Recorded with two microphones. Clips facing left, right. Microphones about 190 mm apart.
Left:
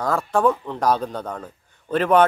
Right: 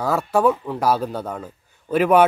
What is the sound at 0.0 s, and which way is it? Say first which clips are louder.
Speech: right 1 dB; 10° right (ahead or behind).